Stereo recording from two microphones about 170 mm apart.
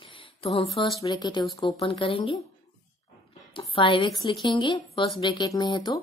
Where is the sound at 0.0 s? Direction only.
30° left (ahead or behind).